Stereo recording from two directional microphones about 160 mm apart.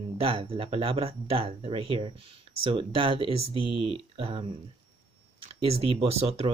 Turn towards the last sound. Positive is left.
turn(degrees=-40)  # may be behind; listen again after turning